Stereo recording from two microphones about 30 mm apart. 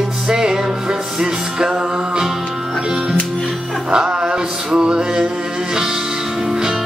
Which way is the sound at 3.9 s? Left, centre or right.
Right.